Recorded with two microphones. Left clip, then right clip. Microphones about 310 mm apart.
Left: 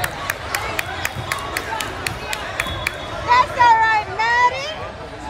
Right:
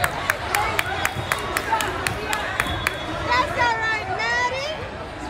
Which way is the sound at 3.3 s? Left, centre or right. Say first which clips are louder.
Left 8 dB; left.